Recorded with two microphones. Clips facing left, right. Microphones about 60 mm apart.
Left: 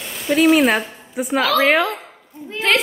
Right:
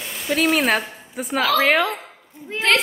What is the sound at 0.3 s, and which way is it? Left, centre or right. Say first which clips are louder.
A woman's voice: left 5 dB; centre.